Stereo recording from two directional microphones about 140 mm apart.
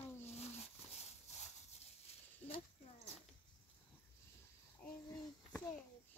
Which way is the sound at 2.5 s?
50° left (ahead or behind).